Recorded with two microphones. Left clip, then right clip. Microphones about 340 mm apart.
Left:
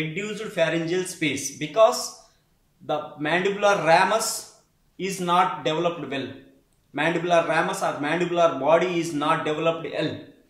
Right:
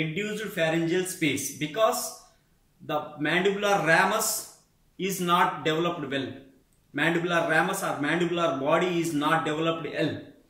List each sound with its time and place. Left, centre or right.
0.1 s speech: centre